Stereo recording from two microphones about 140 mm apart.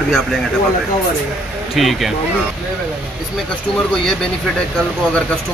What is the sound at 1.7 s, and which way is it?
Speech, centre (ahead or behind).